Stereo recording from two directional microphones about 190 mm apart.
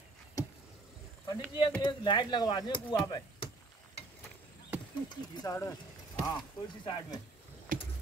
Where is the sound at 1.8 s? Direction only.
25° left (ahead or behind).